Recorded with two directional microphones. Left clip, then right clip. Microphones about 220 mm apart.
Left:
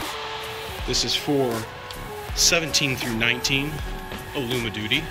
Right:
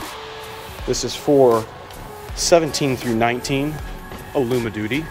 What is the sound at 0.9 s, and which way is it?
Speech, 15° right (ahead or behind).